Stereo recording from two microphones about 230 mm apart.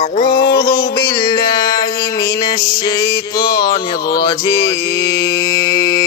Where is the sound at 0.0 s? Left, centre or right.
Left.